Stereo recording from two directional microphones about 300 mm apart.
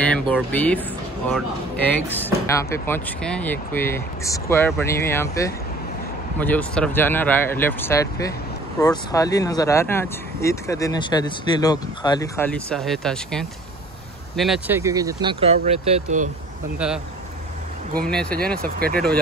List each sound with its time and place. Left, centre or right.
0.0 s speech: centre
1.9 s speech: centre; by 16.3 s right
16.7 s speech: centre
18.0 s speech: centre
18.6 s speech: right